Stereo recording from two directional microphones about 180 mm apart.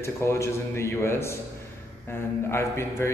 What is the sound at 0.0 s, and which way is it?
A man's voice, 15° left (ahead or behind).